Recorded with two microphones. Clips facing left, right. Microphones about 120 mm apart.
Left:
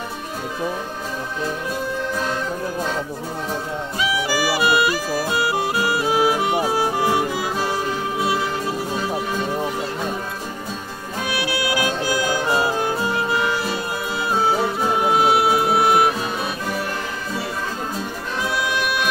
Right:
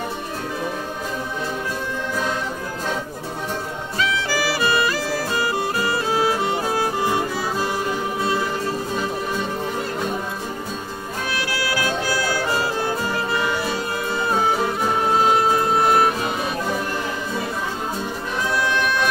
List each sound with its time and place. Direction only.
4.0 s music: 15° left (ahead or behind)
11.2 s music: 15° left (ahead or behind)
15.0 s music: 10° left (ahead or behind)
18.7 s music: 10° left (ahead or behind)